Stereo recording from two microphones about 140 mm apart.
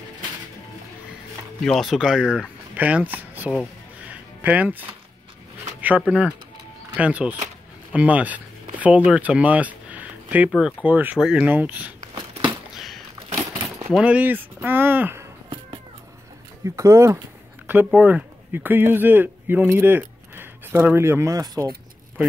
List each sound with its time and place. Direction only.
1.6 s speech: centre (ahead or behind)
4.1 s music: 10° right (ahead or behind)
5.8 s speech: 10° right (ahead or behind)
12.4 s a sound: centre (ahead or behind)
13.9 s speech: 10° right (ahead or behind)
16.6 s speech: 20° right (ahead or behind)